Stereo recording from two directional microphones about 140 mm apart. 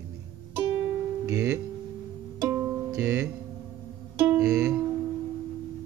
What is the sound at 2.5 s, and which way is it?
Music, 25° right (ahead or behind).